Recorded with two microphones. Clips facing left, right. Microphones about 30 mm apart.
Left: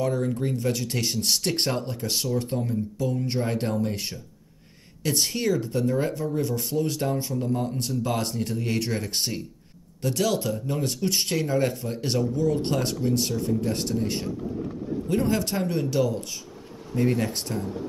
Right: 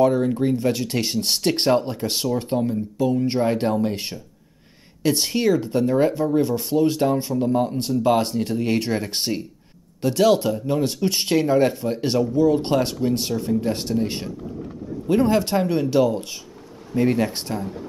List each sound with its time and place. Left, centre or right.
0.0 s speech: right
15.0 s speech: right